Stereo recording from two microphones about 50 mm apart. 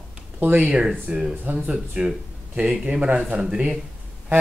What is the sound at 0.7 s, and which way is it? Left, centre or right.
Speech, centre.